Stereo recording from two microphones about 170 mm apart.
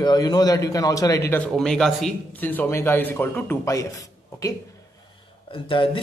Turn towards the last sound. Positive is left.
turn(degrees=30)  # may be behind; listen again after turning